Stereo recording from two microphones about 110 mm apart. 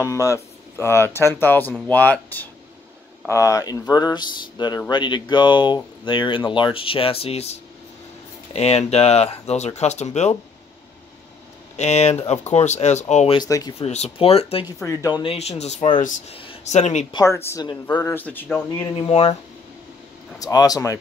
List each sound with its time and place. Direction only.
0.0 s speech: 30° left (ahead or behind)
3.3 s speech: 30° left (ahead or behind); by 7.5 s 70° left (ahead or behind)
8.5 s speech: 75° left (ahead or behind); by 10.3 s 90° left
11.7 s speech: 90° left
13.5 s speech: 35° left (ahead or behind)
13.7 s speech: 75° left (ahead or behind); by 14.7 s 60° left (ahead or behind)
14.8 s speech: 30° left (ahead or behind)
15.2 s speech: 70° left (ahead or behind)
16.3 s speech: 55° left (ahead or behind)
16.6 s speech: 90° left
17.1 s a man's voice: 30° left (ahead or behind)
18.9 s speech: 60° left (ahead or behind)
20.3 s speech: 35° left (ahead or behind)